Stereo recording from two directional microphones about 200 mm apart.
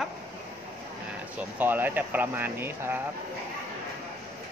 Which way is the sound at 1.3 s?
10° right (ahead or behind).